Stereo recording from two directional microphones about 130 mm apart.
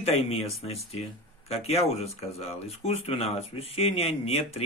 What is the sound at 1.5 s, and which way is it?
Speech, 55° left (ahead or behind).